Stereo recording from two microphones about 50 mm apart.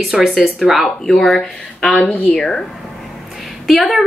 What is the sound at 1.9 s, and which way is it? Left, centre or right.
Speech, left.